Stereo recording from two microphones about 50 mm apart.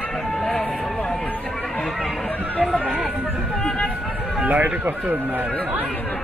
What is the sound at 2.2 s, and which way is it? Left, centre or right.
Run, left.